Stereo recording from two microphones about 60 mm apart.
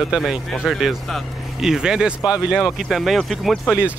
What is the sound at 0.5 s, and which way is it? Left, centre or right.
Speech, centre.